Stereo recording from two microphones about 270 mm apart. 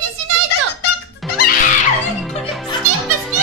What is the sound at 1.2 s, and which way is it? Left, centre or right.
Music, centre.